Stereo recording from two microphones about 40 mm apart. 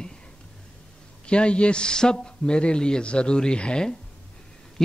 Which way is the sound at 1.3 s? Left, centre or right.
Left.